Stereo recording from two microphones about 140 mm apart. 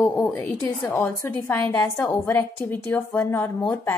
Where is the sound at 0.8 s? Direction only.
20° left (ahead or behind).